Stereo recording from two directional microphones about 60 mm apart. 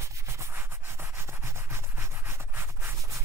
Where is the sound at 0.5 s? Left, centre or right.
Right.